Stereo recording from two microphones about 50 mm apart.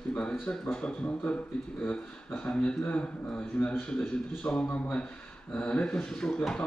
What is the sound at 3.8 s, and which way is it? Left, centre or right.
A man's voice, centre.